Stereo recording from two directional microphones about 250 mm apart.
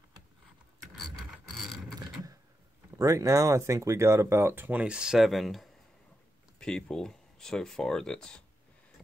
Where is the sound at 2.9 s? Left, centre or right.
Centre.